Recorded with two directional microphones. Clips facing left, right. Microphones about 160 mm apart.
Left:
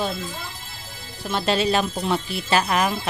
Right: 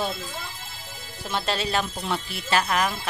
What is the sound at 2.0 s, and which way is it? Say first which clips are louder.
Speech: left 5 dB; 20° left (ahead or behind).